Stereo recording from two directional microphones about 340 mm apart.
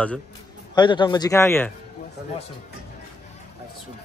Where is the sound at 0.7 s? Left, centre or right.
Centre.